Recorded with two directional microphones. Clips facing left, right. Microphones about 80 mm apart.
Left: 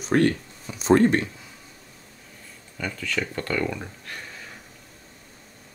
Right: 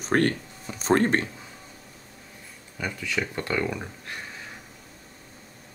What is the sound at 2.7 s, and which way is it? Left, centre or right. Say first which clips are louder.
Speech: left 1 dB; centre.